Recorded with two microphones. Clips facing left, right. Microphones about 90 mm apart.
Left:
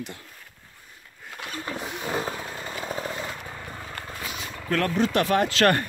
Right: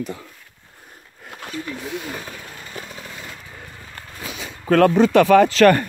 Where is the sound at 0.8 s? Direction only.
50° right (ahead or behind).